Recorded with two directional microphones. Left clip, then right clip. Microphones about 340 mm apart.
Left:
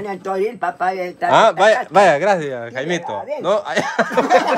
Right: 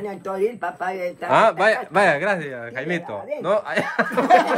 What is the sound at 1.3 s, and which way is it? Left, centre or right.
Speech, centre.